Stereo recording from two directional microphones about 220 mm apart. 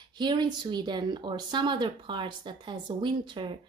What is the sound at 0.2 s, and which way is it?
A woman's voice, 20° right (ahead or behind).